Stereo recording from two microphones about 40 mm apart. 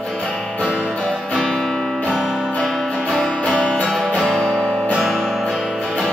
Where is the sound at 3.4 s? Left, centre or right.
Left.